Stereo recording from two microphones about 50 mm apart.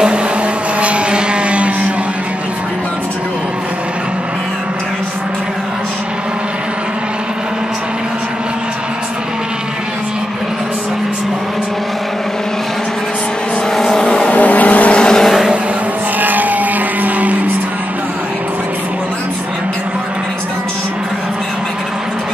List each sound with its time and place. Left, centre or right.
0.7 s vehicle: right
13.7 s vehicle: centre
14.3 s vehicle: left
16.2 s vehicle: right